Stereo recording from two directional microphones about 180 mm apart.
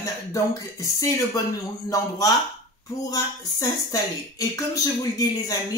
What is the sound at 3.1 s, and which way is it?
Speech, 20° left (ahead or behind).